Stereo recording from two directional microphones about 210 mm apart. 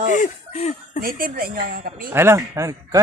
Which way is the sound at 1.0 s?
45° right (ahead or behind).